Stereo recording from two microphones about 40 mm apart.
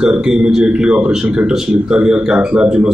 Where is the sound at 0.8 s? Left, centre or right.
Right.